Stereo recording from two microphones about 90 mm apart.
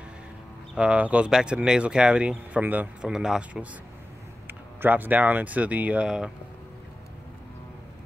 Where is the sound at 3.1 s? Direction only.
5° right (ahead or behind).